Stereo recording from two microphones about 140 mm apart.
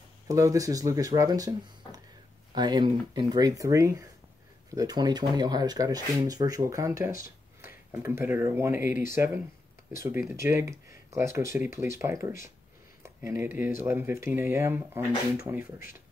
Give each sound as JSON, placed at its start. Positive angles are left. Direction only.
{"t": 0.3, "sound": "speech", "side_deg": -25}
{"t": 2.5, "sound": "speech", "side_deg": -30}